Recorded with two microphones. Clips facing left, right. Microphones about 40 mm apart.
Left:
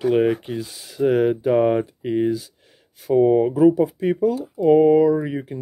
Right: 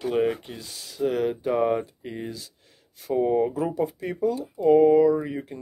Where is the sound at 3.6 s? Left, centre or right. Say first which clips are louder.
Left 10 dB; centre.